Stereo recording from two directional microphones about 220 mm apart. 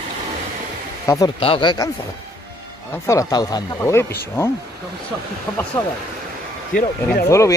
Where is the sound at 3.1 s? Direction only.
15° left (ahead or behind).